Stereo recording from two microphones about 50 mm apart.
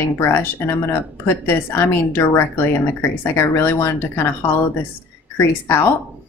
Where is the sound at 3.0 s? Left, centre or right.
Left.